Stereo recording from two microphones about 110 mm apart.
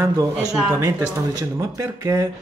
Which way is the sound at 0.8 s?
25° right (ahead or behind).